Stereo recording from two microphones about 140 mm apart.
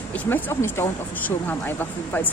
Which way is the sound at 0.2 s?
15° left (ahead or behind).